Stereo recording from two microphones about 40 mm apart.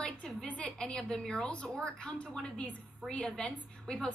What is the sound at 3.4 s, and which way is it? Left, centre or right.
Speech, left.